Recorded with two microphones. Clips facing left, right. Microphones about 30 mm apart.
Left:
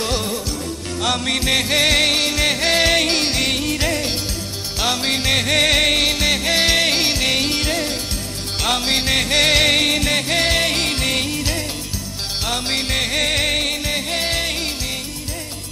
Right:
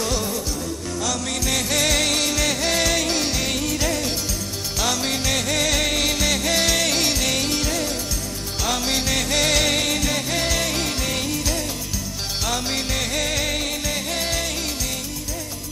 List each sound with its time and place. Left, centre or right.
0.0 s music: left
1.0 s music: left